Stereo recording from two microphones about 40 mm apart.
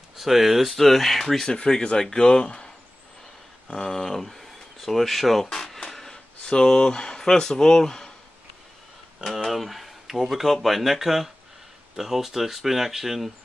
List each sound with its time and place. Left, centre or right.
0.1 s speech: centre
1.5 s speech: left; by 5.5 s centre
5.5 s a sound: centre
6.4 s speech: left
9.3 s speech: centre